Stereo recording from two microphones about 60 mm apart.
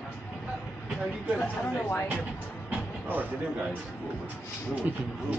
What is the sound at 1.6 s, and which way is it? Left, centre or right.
Speech, left.